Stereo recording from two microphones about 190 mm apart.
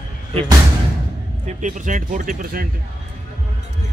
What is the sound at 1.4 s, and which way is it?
Speech, 40° right (ahead or behind).